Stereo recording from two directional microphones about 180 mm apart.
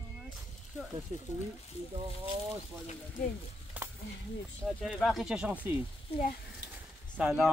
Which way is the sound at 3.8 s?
10° right (ahead or behind).